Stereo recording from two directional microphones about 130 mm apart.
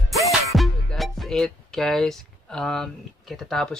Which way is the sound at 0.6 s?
Centre (ahead or behind).